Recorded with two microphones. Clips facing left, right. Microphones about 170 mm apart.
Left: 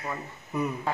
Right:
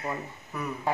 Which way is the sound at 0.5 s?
20° left (ahead or behind).